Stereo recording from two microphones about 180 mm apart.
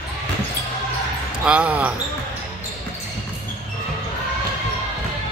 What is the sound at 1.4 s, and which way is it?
Speech, 5° right (ahead or behind).